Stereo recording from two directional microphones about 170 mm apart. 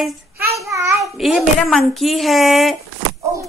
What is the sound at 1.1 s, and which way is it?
Speech, centre (ahead or behind).